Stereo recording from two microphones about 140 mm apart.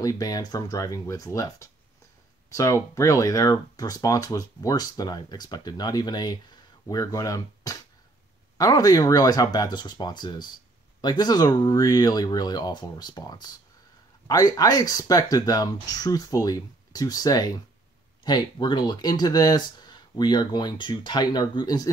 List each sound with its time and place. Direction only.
0.0 s speech: 25° left (ahead or behind)